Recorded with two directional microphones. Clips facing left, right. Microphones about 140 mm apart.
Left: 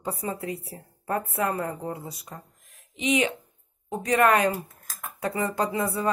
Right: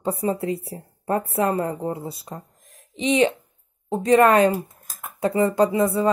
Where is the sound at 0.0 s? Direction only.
25° right (ahead or behind).